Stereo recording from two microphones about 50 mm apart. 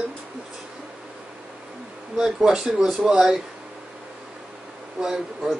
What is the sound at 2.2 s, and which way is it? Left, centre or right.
Speech, centre.